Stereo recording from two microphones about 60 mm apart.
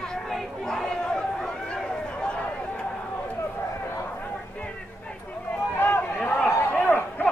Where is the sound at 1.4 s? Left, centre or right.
Centre.